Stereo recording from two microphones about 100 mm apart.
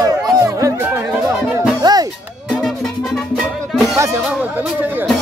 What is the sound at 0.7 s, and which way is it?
Music, 20° right (ahead or behind).